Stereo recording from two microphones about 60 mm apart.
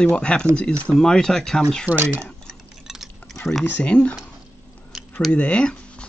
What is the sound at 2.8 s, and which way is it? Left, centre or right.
Chewing, centre.